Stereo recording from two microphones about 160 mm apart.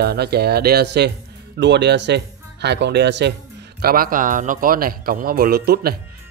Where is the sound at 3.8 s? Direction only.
65° right (ahead or behind); by 6.0 s 80° right.